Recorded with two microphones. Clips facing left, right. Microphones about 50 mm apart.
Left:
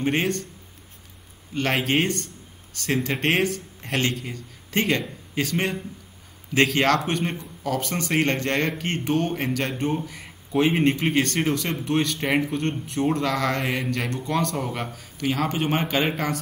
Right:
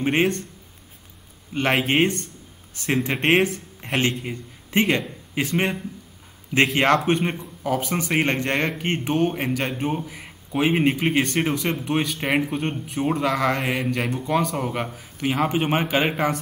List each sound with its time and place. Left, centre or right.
0.0 s speech: centre
1.5 s speech: centre